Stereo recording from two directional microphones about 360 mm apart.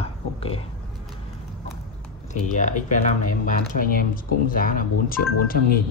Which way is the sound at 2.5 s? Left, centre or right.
Left.